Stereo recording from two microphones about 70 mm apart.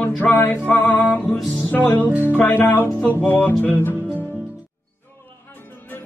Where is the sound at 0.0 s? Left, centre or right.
Left.